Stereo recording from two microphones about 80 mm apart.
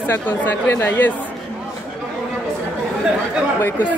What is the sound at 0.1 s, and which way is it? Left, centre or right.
A woman's voice, left.